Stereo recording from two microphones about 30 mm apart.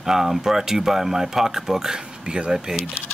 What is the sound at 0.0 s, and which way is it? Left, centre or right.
Speech, centre.